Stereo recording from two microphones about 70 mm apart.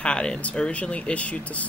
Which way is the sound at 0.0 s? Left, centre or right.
Centre.